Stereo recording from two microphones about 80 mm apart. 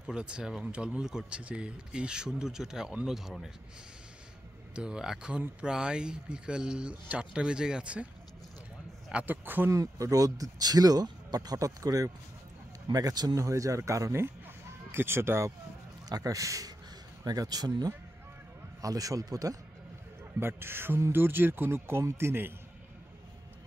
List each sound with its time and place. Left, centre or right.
0.0 s speech: centre
4.7 s speech: centre
9.1 s speech: right
9.7 s speech: right
13.4 s speech: right
16.1 s speech: right
17.2 s speech: right
18.8 s speech: right
20.3 s speech: right